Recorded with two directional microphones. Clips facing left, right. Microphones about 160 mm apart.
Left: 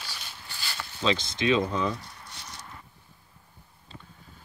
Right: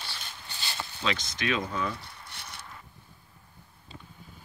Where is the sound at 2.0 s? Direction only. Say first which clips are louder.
Left 1 dB; 60° right (ahead or behind).